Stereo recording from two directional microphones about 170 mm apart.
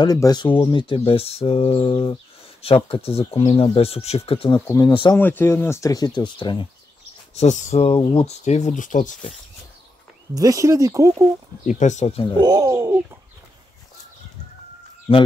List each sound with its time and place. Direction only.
0.0 s speech: 25° left (ahead or behind)
4.6 s speech: 15° left (ahead or behind)
4.8 s speech: 30° left (ahead or behind)
5.1 s speech: 10° left (ahead or behind); by 6.7 s 30° left (ahead or behind)
7.3 s speech: 40° left (ahead or behind)
10.3 s speech: 20° right (ahead or behind)
11.6 s speech: 45° left (ahead or behind)
12.4 s speech: 20° right (ahead or behind)
12.7 s bird: 10° right (ahead or behind)